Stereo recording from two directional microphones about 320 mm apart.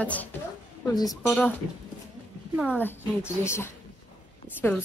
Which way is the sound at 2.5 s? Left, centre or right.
Centre.